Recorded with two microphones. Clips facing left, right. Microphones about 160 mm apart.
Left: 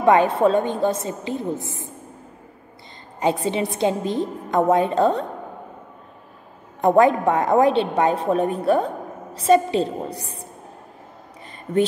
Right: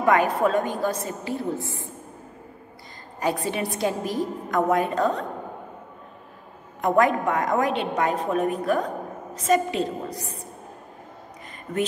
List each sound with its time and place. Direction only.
0.0 s a woman's voice: 25° left (ahead or behind)
3.2 s a woman's voice: 20° left (ahead or behind)
6.8 s a woman's voice: 30° left (ahead or behind)